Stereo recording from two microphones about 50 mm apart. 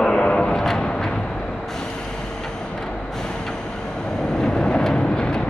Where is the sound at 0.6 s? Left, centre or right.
Centre.